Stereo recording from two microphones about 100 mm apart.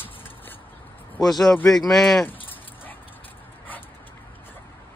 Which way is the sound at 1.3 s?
5° left (ahead or behind).